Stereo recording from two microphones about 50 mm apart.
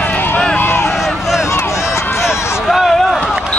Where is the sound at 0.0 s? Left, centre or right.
Left.